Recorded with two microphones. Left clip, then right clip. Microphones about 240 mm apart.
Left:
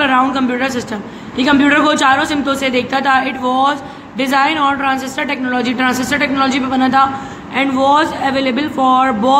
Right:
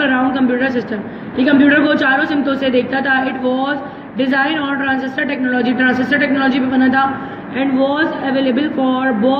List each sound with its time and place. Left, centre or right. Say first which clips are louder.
0.0 s a woman's voice: left 2 dB; centre